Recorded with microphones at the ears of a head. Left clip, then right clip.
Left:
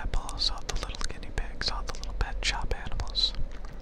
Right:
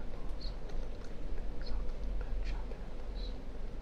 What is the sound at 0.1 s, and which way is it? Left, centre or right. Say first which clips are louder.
Whispering: left 18 dB; left.